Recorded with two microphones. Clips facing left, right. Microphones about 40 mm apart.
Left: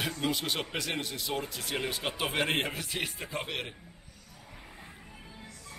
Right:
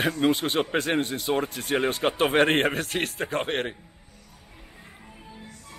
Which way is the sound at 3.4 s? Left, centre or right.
Right.